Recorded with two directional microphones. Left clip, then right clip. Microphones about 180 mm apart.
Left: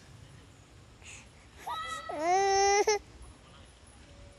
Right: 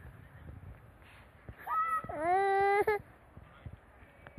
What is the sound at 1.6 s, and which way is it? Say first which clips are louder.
Baby cry: right 5 dB; 20° left (ahead or behind).